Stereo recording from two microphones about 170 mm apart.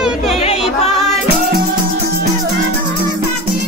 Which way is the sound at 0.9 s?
Centre (ahead or behind).